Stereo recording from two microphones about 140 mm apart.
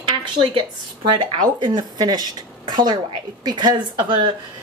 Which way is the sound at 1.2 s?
30° right (ahead or behind).